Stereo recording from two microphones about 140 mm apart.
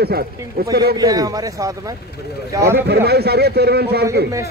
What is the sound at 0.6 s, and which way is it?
Speech, 90° right.